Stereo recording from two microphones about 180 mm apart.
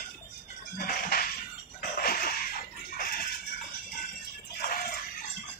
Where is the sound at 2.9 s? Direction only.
55° left (ahead or behind).